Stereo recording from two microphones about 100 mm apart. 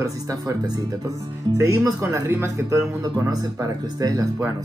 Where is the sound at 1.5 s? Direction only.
30° right (ahead or behind).